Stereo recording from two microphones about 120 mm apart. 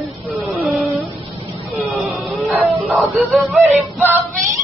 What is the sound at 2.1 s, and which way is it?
Music, centre (ahead or behind).